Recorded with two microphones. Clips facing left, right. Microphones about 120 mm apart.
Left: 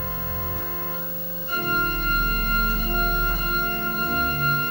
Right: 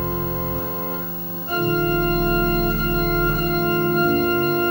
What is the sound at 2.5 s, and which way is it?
Organ, 50° right (ahead or behind).